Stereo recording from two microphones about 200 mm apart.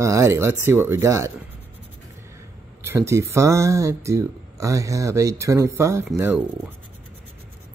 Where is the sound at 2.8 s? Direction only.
10° right (ahead or behind).